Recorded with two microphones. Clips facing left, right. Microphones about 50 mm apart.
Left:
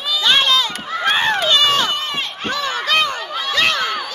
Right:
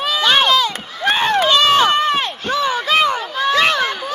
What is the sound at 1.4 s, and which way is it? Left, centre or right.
Run, right.